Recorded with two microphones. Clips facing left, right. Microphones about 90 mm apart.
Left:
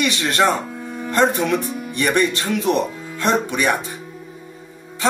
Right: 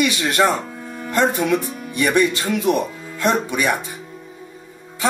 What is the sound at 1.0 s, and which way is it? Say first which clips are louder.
Speech: even; 10° right (ahead or behind).